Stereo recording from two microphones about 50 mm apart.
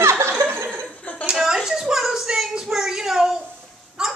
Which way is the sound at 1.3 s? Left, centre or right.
Centre.